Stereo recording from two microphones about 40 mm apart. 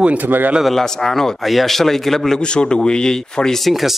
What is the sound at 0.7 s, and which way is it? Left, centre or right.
A man's voice, centre.